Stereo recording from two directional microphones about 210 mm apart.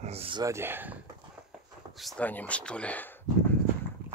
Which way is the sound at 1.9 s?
5° left (ahead or behind).